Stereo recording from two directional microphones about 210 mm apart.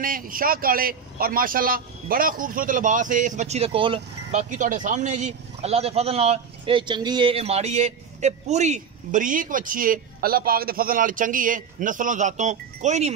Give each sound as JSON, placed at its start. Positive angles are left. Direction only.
{"t": 0.0, "sound": "a man's voice", "side_deg": -40}